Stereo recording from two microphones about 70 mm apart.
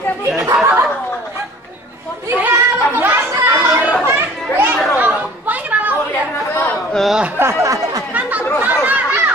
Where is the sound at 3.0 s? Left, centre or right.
Right.